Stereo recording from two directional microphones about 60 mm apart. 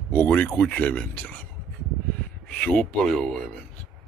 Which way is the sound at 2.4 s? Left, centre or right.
Left.